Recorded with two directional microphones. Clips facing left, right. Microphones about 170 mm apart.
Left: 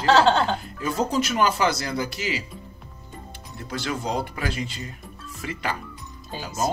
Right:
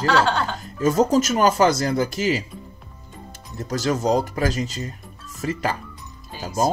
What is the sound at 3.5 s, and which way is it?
Speech, 40° right (ahead or behind).